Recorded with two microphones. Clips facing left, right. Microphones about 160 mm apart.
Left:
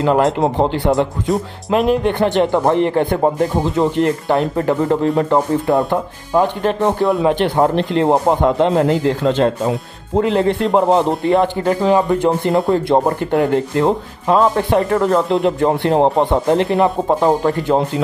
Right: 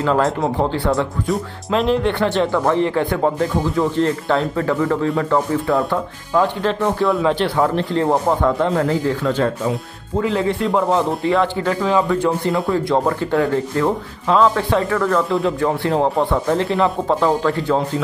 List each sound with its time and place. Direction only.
0.0 s speech: 20° left (ahead or behind)
10.2 s speech: 65° left (ahead or behind)
10.9 s speech: 20° left (ahead or behind)